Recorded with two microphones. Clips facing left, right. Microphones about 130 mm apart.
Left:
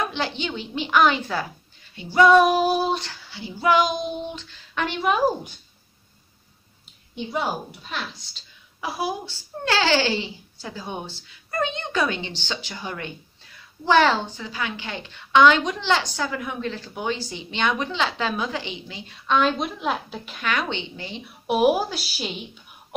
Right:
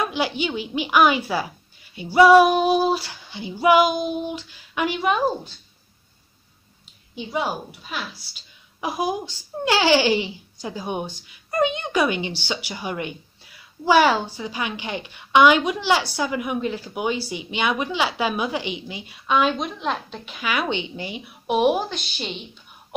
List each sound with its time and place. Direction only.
0.0 s a woman's voice: 10° right (ahead or behind)
7.2 s a woman's voice: centre (ahead or behind)
21.5 s a woman's voice: 5° left (ahead or behind)